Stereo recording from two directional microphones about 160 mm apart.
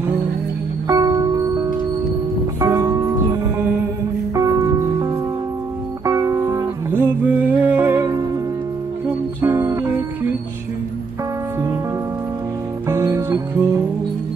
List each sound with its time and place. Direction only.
0.8 s music: 20° right (ahead or behind)
9.4 s music: 15° right (ahead or behind)
12.8 s music: 15° right (ahead or behind)